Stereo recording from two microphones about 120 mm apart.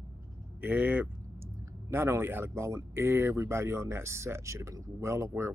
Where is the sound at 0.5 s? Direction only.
15° right (ahead or behind).